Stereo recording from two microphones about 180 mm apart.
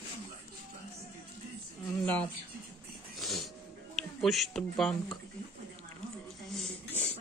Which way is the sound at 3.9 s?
Centre (ahead or behind).